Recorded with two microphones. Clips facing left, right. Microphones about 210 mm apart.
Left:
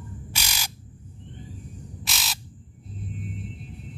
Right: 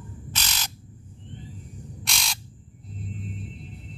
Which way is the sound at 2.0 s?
5° left (ahead or behind).